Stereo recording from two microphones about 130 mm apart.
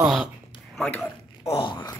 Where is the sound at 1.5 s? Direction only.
40° left (ahead or behind).